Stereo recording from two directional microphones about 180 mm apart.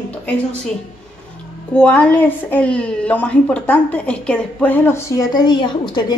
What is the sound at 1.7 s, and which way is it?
A woman's voice, 10° left (ahead or behind).